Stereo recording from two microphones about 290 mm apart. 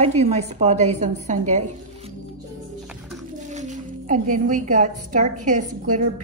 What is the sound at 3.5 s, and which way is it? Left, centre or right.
Speech, right.